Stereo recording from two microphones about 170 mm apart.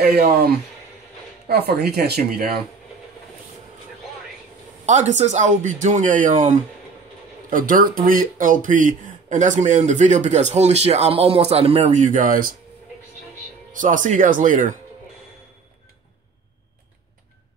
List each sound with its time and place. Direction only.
0.0 s speech: 65° right (ahead or behind)
1.5 s speech: 65° right (ahead or behind)
4.8 s speech: 45° right (ahead or behind)
13.7 s speech: 50° right (ahead or behind)